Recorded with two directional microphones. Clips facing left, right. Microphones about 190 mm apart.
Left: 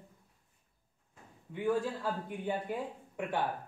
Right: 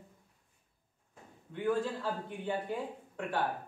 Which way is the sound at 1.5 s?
10° left (ahead or behind).